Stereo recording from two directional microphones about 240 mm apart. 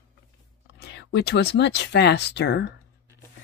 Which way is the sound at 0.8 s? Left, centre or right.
Left.